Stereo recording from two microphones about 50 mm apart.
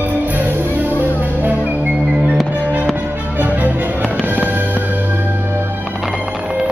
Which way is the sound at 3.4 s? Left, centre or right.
Right.